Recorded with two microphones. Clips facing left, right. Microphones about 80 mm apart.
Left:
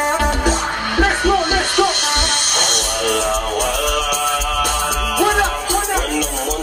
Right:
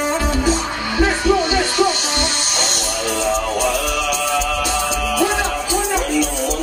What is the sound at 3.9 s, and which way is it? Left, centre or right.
Music, left.